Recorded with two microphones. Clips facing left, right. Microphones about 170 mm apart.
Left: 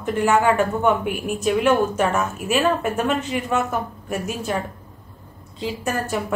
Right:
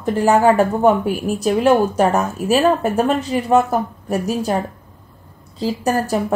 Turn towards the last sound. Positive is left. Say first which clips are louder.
# right 6 dB
turn(degrees=-35)  # may be behind; listen again after turning